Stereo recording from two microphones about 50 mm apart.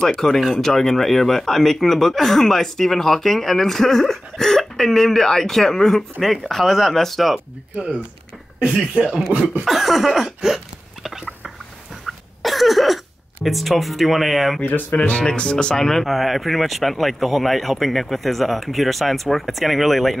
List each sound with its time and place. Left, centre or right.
0.0 s speech: centre
7.3 s speech: right
9.7 s a sound: centre
12.1 s throat clearing: centre
14.6 s speech: left
15.0 s speech: left; by 20.2 s centre